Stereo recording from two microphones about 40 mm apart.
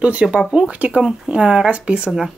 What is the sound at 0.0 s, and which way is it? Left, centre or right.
Speech, right.